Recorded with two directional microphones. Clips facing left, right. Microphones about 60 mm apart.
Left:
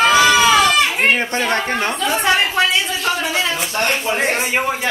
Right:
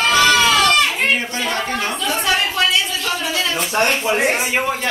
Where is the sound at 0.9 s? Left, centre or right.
Left.